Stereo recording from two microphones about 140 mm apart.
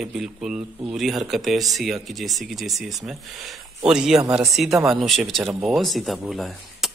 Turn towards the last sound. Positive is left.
turn(degrees=0)  # may be behind; listen again after turning